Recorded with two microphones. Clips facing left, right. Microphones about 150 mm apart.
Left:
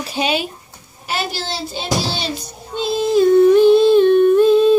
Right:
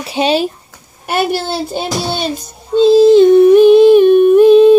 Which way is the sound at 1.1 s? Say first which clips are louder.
Right 8 dB; 55° right (ahead or behind).